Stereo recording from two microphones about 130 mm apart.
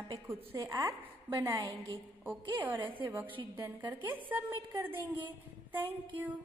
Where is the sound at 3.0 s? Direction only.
20° right (ahead or behind).